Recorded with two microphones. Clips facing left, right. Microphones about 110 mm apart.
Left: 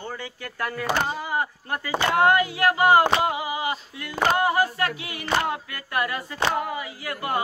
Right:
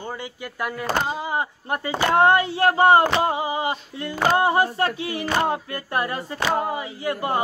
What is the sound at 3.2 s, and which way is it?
Female singing, 30° right (ahead or behind).